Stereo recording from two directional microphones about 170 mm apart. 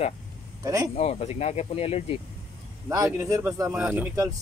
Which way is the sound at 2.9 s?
20° right (ahead or behind).